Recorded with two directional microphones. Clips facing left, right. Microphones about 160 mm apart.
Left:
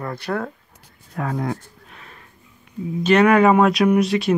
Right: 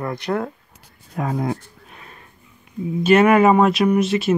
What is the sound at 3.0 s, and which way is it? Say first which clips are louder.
Speech: right 1 dB; 5° right (ahead or behind).